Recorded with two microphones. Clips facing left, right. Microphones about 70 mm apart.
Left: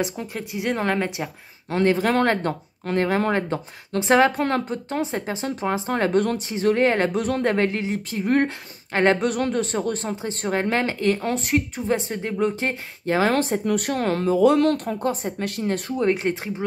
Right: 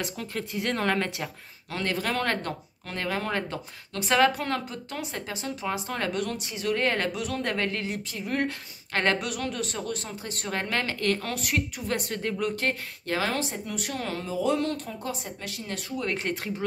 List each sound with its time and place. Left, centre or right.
0.0 s speech: centre
1.7 s speech: left
4.4 s speech: left
6.8 s speech: left
7.1 s speech: left
7.4 s speech: left
8.1 s speech: left
8.9 s speech: left
9.2 s speech: left
13.3 s speech: left
16.1 s speech: left